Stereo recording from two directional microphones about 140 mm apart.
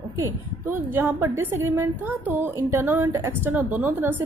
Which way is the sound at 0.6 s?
15° right (ahead or behind).